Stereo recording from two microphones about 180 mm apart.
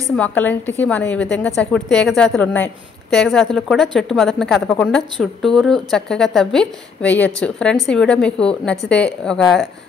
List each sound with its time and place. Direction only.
0.2 s a woman's voice: 10° left (ahead or behind)